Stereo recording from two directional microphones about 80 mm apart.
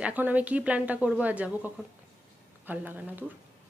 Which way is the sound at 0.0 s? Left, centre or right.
Centre.